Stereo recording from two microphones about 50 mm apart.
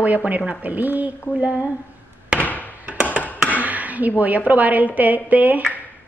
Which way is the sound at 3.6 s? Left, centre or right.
Right.